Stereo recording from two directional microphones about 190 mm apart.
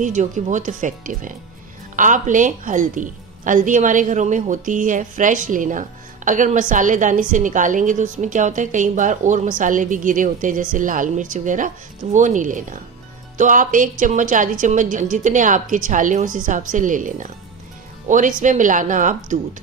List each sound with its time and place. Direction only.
0.0 s a woman's voice: 40° right (ahead or behind)